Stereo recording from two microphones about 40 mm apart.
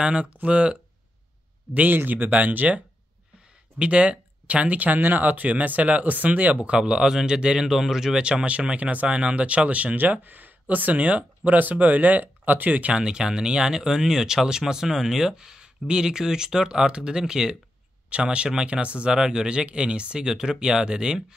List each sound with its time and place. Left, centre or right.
0.0 s speech: right
1.7 s speech: right
2.0 s speech: right
3.7 s speech: right; by 8.2 s centre
8.2 s speech: right
10.2 s speech: right
12.9 s speech: right
18.1 s speech: right
19.1 s speech: centre